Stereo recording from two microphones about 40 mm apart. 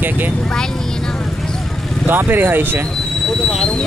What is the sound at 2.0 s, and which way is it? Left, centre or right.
Speech, right.